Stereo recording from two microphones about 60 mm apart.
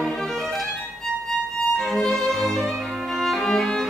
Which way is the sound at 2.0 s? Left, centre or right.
Centre.